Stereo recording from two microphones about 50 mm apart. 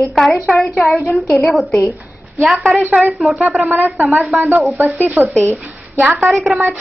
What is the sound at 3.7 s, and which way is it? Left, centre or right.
Speech, right.